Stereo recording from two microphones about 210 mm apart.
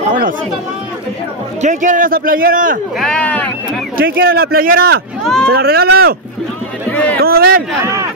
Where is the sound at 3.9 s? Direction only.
45° right (ahead or behind).